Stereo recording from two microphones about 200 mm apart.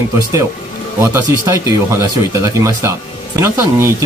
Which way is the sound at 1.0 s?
15° right (ahead or behind).